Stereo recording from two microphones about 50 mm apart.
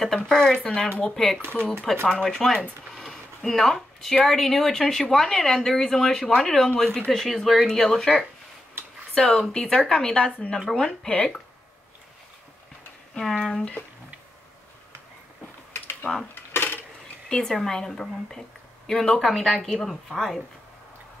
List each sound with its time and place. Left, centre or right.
0.0 s speech: centre
1.6 s speech: left
2.0 s speech: centre
13.3 s a woman's voice: centre
16.0 s speech: left
16.5 s dishes: left
17.3 s a woman's voice: centre